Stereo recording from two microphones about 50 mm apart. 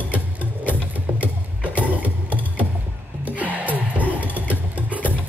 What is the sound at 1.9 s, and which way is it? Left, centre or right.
Music, right.